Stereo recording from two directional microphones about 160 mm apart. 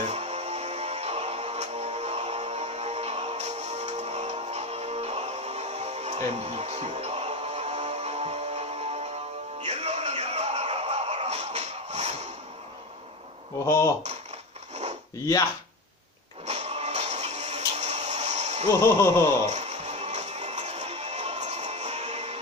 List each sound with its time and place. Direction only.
0.0 s music: 45° right (ahead or behind)
16.4 s music: 45° right (ahead or behind)
18.7 s a sound: 15° left (ahead or behind)
19.4 s music: 45° right (ahead or behind)